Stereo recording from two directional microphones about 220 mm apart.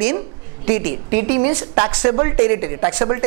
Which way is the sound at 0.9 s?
55° right (ahead or behind).